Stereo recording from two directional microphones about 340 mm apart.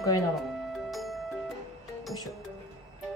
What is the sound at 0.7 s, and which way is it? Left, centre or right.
Music, centre.